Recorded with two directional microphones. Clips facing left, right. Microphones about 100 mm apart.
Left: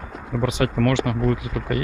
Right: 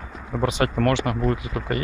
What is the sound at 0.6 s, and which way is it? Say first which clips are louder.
Speech: left 1 dB; 40° right (ahead or behind).